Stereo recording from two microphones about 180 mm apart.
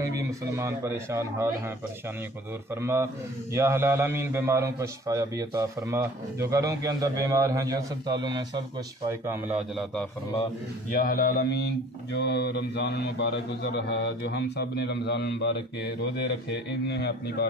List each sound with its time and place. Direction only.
0.0 s a man's voice: 15° right (ahead or behind)
2.7 s a man's voice: 15° right (ahead or behind)
10.9 s speech: 55° left (ahead or behind)